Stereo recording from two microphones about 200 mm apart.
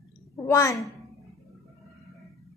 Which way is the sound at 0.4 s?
15° left (ahead or behind).